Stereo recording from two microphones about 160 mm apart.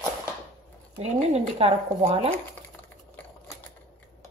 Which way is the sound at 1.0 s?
40° right (ahead or behind).